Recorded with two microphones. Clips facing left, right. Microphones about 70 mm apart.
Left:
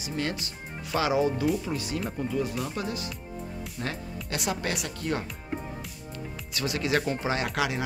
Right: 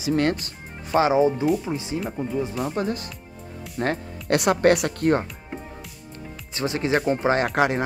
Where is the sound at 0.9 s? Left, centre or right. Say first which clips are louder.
Right 6 dB; right.